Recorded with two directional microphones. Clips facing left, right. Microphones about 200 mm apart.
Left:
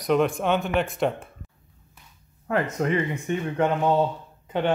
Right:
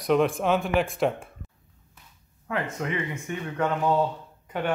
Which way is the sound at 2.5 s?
40° left (ahead or behind).